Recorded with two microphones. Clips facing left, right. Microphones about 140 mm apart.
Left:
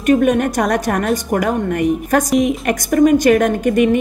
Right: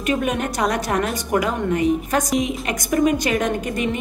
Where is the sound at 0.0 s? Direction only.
50° left (ahead or behind).